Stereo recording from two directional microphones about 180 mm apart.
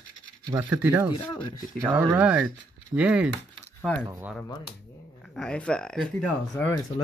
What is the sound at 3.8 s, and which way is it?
Speech, 5° left (ahead or behind).